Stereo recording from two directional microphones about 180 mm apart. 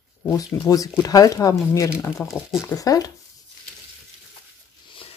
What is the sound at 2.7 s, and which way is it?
Speech, 20° left (ahead or behind).